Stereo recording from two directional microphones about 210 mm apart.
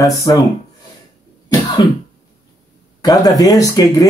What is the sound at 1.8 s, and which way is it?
Cough, 20° left (ahead or behind).